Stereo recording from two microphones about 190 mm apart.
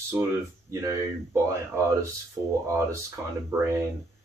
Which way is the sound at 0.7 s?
15° right (ahead or behind).